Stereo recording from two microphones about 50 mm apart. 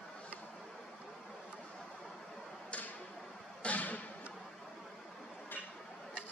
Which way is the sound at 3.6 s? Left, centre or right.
Left.